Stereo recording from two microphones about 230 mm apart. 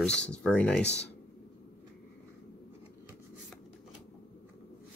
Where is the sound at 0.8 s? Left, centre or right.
Left.